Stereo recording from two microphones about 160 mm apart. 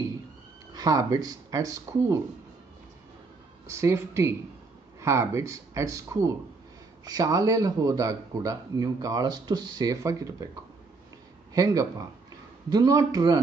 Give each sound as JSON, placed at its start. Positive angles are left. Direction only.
{"t": 0.7, "sound": "speech", "side_deg": -25}
{"t": 3.7, "sound": "speech", "side_deg": -15}
{"t": 11.5, "sound": "speech", "side_deg": -20}